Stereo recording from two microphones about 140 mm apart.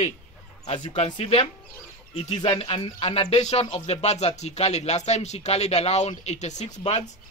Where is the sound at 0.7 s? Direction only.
35° left (ahead or behind).